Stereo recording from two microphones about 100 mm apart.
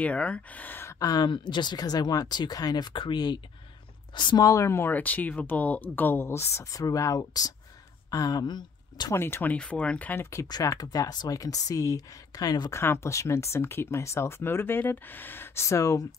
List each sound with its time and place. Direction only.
0.0 s speech: 15° left (ahead or behind)
0.9 s speech: 40° left (ahead or behind)
4.5 s speech: 30° left (ahead or behind); by 9.1 s 45° left (ahead or behind)
9.1 s speech: 25° left (ahead or behind)
10.5 s speech: 35° left (ahead or behind)
12.7 s speech: 25° left (ahead or behind)